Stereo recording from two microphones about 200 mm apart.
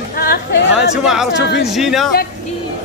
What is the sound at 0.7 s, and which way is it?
Speech, centre (ahead or behind).